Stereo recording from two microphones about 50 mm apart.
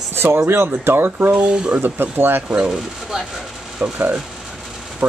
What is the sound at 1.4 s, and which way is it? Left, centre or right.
Speech, right.